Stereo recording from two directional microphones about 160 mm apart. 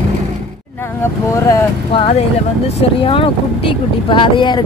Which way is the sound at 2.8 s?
35° left (ahead or behind).